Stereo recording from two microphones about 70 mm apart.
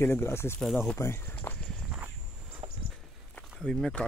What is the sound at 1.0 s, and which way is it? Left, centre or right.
Speech, left.